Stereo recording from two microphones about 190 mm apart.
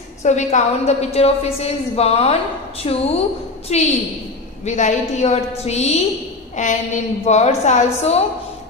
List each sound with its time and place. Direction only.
0.2 s a woman's voice: 40° left (ahead or behind)